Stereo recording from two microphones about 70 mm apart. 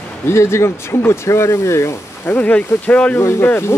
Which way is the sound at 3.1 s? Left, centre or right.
Left.